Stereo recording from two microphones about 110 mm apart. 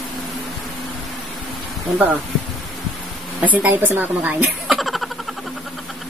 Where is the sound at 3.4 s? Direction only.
15° right (ahead or behind).